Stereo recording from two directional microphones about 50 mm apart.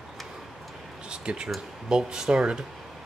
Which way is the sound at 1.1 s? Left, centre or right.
Centre.